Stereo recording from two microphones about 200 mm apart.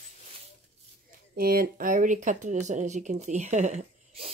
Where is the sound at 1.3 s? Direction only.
50° right (ahead or behind).